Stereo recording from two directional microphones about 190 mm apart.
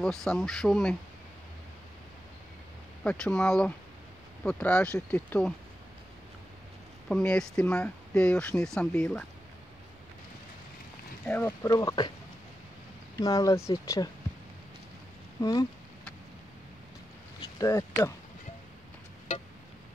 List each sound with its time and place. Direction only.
0.0 s speech: 5° left (ahead or behind)
3.0 s speech: 5° left (ahead or behind)
7.1 s speech: 5° left (ahead or behind)
11.2 s speech: 10° left (ahead or behind)
13.2 s speech: 20° left (ahead or behind)
17.4 s a sound: 20° left (ahead or behind)